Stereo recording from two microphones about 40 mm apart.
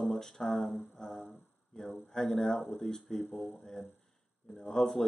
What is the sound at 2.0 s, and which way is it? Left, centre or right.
Speech, centre.